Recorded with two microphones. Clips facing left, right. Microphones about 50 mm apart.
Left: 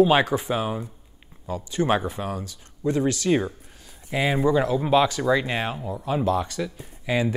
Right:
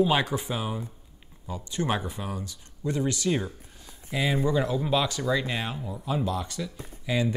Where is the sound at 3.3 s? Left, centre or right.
Left.